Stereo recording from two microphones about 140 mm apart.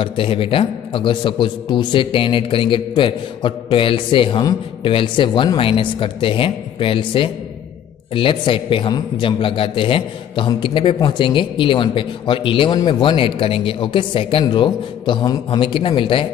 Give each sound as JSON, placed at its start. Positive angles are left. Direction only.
{"t": 0.0, "sound": "a man's voice", "side_deg": 40}